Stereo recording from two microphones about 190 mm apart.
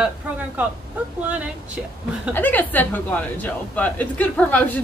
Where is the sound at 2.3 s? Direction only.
10° left (ahead or behind).